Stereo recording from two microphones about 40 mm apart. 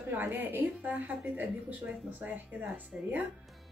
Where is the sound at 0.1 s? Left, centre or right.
Right.